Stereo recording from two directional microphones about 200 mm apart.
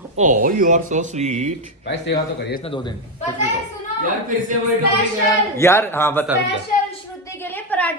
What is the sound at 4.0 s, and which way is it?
Speech, 40° right (ahead or behind).